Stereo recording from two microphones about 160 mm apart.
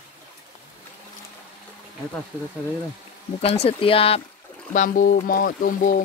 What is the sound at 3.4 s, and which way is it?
Speech, 35° left (ahead or behind).